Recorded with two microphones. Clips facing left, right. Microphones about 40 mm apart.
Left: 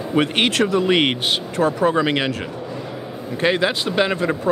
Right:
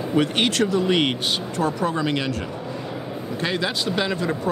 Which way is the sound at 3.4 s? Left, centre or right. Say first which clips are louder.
Left 6 dB; left.